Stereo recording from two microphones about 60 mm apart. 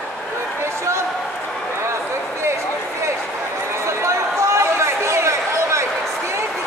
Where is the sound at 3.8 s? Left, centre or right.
Right.